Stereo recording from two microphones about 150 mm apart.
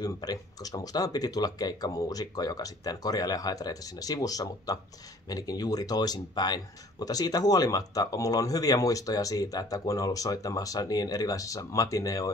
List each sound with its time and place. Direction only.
0.0 s speech: 25° left (ahead or behind)